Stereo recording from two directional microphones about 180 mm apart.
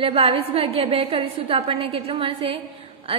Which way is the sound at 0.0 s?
30° right (ahead or behind).